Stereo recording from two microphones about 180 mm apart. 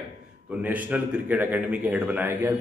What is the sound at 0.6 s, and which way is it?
A man's voice, 10° right (ahead or behind).